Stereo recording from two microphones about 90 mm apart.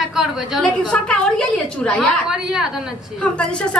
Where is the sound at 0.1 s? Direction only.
5° right (ahead or behind).